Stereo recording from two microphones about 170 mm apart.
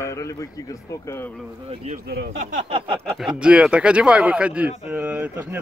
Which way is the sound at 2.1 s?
70° right (ahead or behind).